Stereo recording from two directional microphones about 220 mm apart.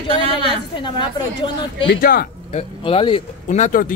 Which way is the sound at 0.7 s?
20° left (ahead or behind).